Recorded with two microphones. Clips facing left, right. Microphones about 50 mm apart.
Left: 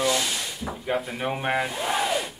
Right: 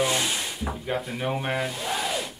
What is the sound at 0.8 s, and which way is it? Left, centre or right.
Speech, centre.